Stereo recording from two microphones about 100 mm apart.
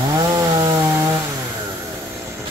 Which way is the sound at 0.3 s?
35° right (ahead or behind).